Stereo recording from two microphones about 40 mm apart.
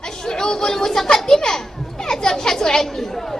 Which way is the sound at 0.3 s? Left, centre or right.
Centre.